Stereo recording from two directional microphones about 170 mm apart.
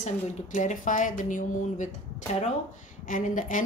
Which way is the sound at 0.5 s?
50° left (ahead or behind).